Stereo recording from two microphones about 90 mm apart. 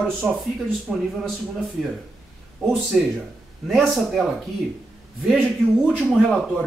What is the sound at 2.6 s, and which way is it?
Speech, centre (ahead or behind).